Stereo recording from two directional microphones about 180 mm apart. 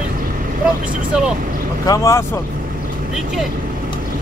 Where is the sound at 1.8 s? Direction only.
15° left (ahead or behind).